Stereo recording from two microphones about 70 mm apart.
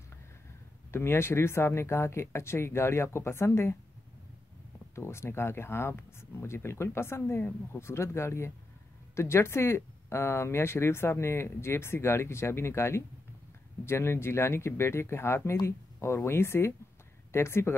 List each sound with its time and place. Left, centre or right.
0.9 s speech: left
4.9 s speech: left